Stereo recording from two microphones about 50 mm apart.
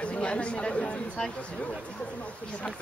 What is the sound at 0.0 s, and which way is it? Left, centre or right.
Speech, left.